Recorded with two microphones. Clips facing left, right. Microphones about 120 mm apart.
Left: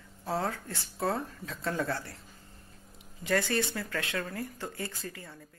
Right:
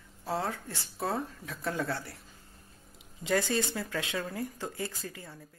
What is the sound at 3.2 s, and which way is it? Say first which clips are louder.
Speech: even; 15° right (ahead or behind).